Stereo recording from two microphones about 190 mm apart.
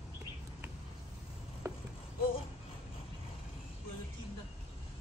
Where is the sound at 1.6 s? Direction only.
15° right (ahead or behind).